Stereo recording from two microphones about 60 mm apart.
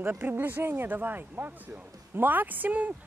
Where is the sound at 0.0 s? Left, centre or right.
Right.